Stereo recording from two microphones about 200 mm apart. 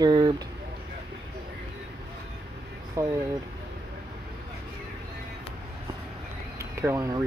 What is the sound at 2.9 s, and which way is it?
Speech, 15° right (ahead or behind).